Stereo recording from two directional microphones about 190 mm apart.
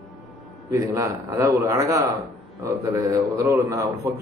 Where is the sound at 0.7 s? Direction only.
15° right (ahead or behind).